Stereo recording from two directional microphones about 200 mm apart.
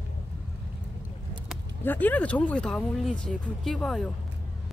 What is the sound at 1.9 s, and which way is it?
Speech, 10° left (ahead or behind).